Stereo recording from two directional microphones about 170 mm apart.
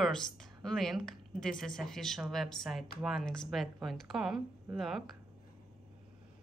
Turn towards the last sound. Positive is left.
turn(degrees=0)  # may be behind; listen again after turning